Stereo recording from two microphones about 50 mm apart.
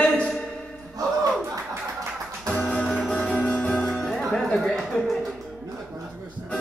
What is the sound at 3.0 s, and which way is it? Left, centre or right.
Music, centre.